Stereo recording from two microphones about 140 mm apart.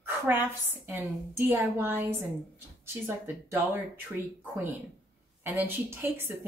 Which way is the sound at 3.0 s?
15° right (ahead or behind).